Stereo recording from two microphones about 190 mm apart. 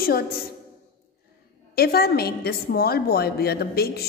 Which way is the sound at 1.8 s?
55° left (ahead or behind).